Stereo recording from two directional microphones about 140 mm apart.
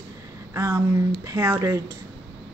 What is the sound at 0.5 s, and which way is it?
A woman's voice, 25° right (ahead or behind).